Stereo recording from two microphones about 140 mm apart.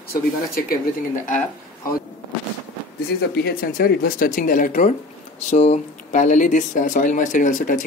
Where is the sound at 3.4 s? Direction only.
90° left; by 4.9 s 70° left (ahead or behind).